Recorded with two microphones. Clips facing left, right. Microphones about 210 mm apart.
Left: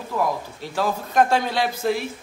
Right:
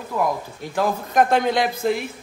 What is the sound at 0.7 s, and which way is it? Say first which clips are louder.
A man's voice: right 2 dB; 15° right (ahead or behind).